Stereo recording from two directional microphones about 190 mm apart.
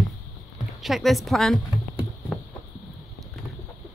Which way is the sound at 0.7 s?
Centre (ahead or behind).